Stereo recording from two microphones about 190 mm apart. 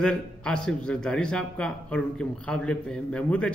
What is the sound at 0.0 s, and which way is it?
A man's voice, 5° left (ahead or behind).